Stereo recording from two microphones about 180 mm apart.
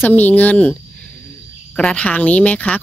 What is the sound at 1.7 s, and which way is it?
Speech, 5° left (ahead or behind).